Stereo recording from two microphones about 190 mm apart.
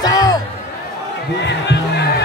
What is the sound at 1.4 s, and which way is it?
Music, 65° left (ahead or behind).